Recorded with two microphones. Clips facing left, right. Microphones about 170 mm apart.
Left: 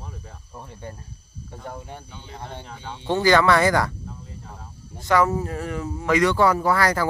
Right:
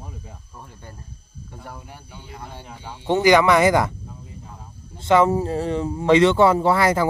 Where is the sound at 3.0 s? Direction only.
15° right (ahead or behind).